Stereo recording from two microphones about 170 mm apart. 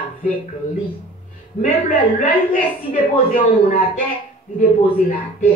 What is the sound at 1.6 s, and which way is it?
A woman's voice, 50° left (ahead or behind).